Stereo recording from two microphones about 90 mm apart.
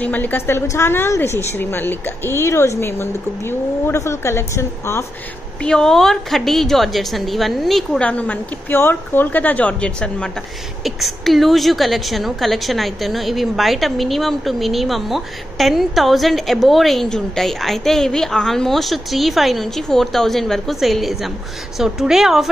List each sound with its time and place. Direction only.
0.0 s a woman's voice: 20° left (ahead or behind)
5.6 s a woman's voice: 5° left (ahead or behind)
8.0 s a woman's voice: 15° left (ahead or behind)
10.8 s a woman's voice: centre (ahead or behind)